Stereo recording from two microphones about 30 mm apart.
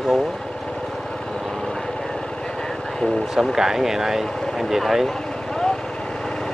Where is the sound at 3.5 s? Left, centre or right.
Centre.